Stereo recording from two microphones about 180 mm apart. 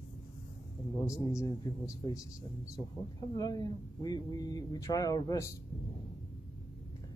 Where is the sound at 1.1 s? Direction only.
15° left (ahead or behind).